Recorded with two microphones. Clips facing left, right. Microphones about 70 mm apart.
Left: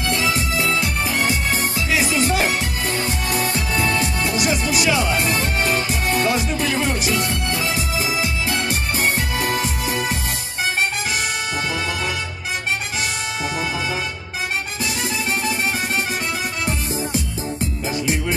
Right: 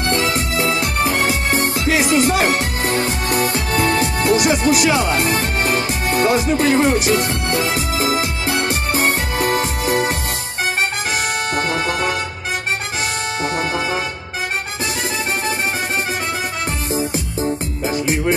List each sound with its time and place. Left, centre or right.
0.0 s music: right
11.5 s music: right
16.6 s music: right